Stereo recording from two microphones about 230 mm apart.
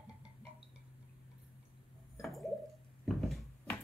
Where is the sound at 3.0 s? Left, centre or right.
Centre.